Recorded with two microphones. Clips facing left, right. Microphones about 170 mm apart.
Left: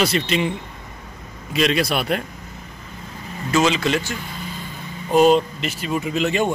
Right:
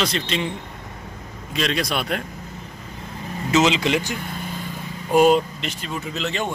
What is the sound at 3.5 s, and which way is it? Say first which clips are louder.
Speech: even; 20° right (ahead or behind).